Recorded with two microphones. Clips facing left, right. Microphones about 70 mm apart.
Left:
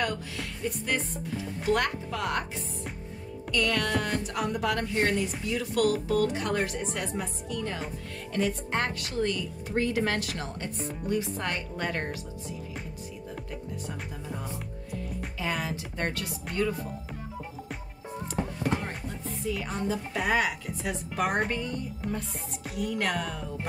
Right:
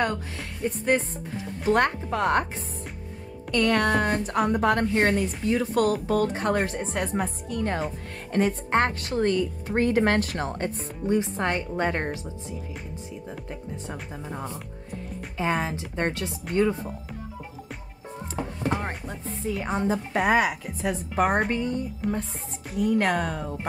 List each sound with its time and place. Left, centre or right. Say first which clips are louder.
0.7 s speech: right 7 dB; right
3.5 s speech: right 6 dB; right
16.5 s speech: right 7 dB; centre
18.3 s speech: right 2 dB; right